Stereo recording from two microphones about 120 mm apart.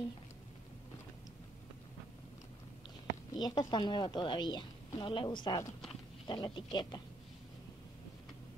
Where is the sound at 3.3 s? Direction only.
35° left (ahead or behind).